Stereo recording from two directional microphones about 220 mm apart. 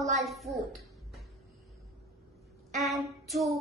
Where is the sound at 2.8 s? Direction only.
Centre (ahead or behind).